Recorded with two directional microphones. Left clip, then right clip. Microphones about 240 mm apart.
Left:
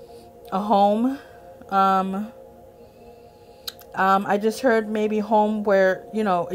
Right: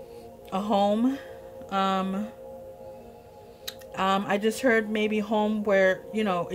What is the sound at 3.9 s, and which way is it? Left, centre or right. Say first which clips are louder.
Speech: left 6 dB; centre.